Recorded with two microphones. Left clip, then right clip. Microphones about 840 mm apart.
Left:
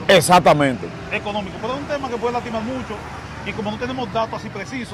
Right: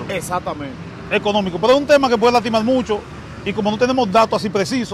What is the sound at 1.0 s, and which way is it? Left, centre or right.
Speech, right.